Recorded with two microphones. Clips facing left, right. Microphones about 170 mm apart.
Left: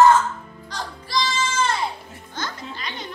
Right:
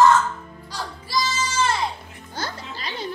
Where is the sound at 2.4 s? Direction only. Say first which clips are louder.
Even; 35° right (ahead or behind).